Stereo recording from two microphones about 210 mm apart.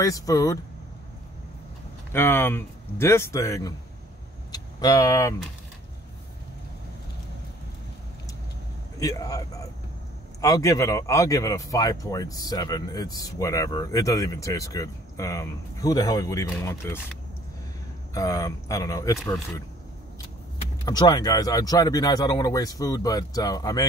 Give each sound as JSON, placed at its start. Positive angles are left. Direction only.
{"t": 0.0, "sound": "speech", "side_deg": 15}
{"t": 2.1, "sound": "speech", "side_deg": 10}
{"t": 9.0, "sound": "speech", "side_deg": 15}
{"t": 18.1, "sound": "speech", "side_deg": 15}
{"t": 20.8, "sound": "speech", "side_deg": 20}